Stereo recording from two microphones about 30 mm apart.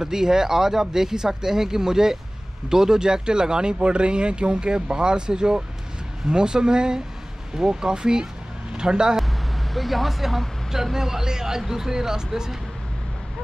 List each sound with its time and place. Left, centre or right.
0.0 s speech: centre
9.8 s speech: centre